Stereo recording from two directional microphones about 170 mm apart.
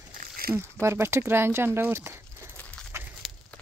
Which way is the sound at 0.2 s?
60° right (ahead or behind).